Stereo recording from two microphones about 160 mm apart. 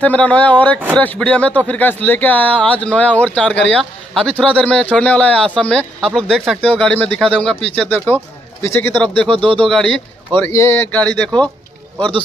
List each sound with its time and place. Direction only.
0.0 s a man's voice: 10° left (ahead or behind)
9.3 s speech: 35° right (ahead or behind)
10.4 s a man's voice: 15° left (ahead or behind)